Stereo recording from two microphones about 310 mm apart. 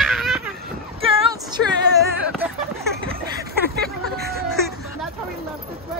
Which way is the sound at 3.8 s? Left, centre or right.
Right.